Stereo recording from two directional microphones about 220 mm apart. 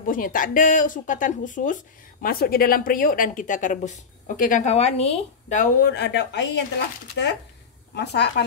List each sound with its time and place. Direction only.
0.0 s speech: 40° left (ahead or behind)
5.9 s speech: 50° left (ahead or behind)
7.9 s speech: 50° left (ahead or behind)